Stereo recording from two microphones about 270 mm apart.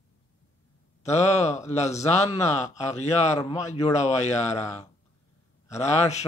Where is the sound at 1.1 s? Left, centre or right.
Left.